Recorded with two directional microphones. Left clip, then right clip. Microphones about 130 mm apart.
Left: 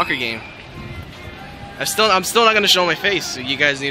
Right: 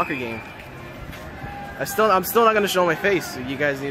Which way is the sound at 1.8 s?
10° right (ahead or behind).